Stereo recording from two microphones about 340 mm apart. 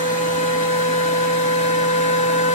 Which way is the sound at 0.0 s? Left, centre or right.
Left.